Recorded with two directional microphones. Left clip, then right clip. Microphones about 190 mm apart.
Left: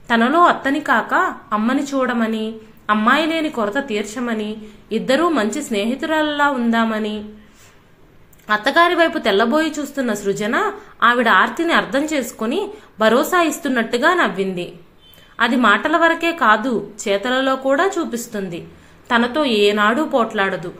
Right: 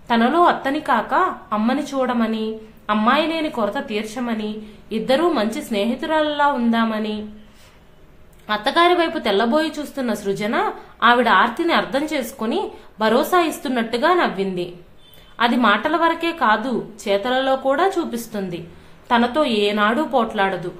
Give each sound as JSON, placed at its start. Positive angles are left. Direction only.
{"t": 0.1, "sound": "a woman's voice", "side_deg": 5}
{"t": 8.5, "sound": "a woman's voice", "side_deg": 10}